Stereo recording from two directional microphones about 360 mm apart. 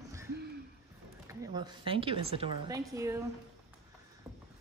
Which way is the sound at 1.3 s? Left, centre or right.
Centre.